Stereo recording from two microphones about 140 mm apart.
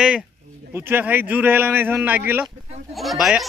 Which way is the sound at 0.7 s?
15° right (ahead or behind).